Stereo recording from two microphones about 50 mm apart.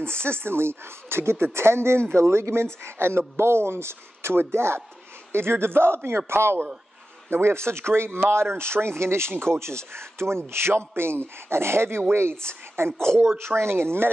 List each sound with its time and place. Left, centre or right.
0.0 s speech: right